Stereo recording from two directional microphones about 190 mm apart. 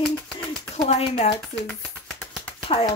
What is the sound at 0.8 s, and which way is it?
Speech, 35° left (ahead or behind).